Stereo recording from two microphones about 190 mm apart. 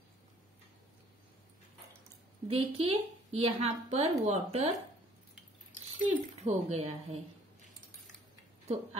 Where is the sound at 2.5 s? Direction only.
30° right (ahead or behind).